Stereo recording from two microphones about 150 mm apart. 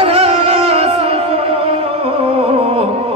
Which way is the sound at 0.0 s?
40° right (ahead or behind).